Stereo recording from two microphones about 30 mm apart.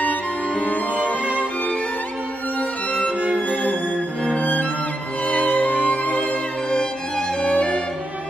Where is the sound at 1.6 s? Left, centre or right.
Left.